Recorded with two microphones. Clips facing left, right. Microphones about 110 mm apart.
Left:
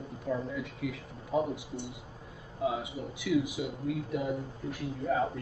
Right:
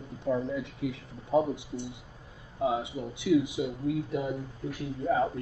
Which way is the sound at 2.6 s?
25° right (ahead or behind).